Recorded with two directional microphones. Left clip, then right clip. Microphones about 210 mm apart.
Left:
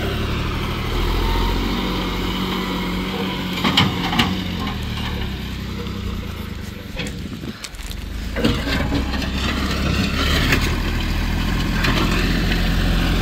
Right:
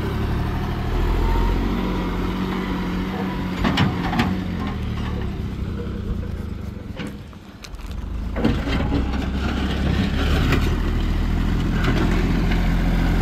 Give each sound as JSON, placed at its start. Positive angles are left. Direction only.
{"t": 0.9, "sound": "vehicle", "side_deg": 20}
{"t": 8.4, "sound": "vehicle", "side_deg": 30}